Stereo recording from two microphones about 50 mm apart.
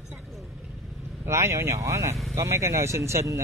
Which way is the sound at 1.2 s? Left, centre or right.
Right.